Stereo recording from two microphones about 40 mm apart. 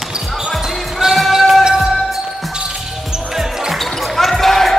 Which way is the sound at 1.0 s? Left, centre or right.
Centre.